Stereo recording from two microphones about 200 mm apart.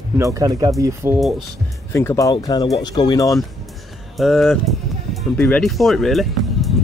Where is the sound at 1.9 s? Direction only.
15° left (ahead or behind).